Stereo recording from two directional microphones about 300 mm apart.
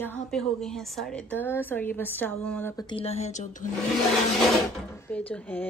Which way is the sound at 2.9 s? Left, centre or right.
Centre.